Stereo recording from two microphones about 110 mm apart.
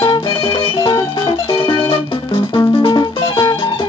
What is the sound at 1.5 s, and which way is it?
Music, 55° left (ahead or behind).